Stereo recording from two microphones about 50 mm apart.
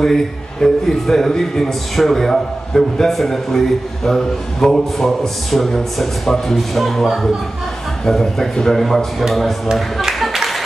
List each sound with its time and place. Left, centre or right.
0.0 s a man's voice: centre
9.8 s music: centre